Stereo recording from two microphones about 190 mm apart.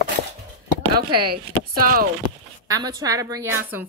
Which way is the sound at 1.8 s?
50° right (ahead or behind).